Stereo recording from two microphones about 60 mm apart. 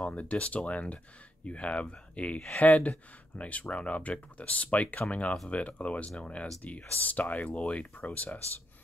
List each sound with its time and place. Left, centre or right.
0.0 s speech: left